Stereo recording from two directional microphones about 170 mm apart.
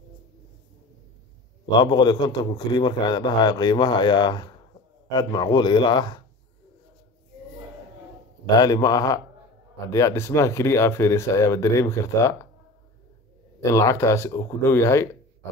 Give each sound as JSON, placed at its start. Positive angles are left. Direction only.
{"t": 1.8, "sound": "a man's voice", "side_deg": 25}
{"t": 8.5, "sound": "a man's voice", "side_deg": 25}
{"t": 13.7, "sound": "speech", "side_deg": 15}